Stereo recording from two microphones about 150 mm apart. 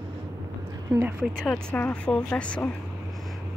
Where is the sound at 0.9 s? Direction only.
Centre (ahead or behind).